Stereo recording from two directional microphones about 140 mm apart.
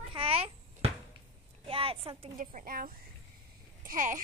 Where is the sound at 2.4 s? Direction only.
70° right (ahead or behind).